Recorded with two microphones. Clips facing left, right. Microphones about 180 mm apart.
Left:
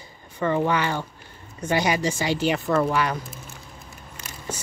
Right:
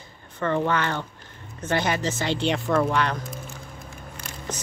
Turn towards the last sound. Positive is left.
turn(degrees=10)  # may be behind; listen again after turning